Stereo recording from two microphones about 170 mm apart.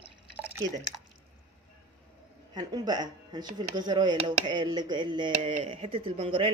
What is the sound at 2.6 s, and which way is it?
Speech, 25° right (ahead or behind).